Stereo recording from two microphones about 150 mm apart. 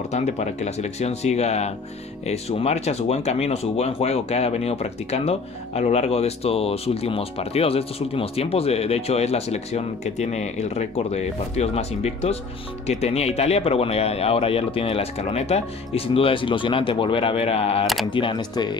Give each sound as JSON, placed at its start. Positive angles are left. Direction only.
{"t": 0.1, "sound": "speech", "side_deg": 50}